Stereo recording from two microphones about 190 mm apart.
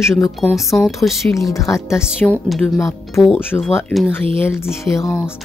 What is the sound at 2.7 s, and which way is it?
Speech, 15° left (ahead or behind).